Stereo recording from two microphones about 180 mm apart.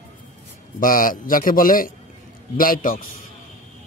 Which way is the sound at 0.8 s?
50° left (ahead or behind).